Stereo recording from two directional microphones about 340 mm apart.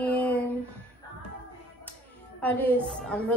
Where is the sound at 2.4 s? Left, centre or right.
Centre.